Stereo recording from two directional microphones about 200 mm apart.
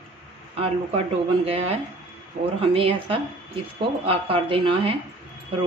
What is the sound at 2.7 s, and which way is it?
Speech, 25° right (ahead or behind).